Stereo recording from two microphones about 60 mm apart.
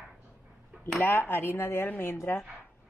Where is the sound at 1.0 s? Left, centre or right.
Left.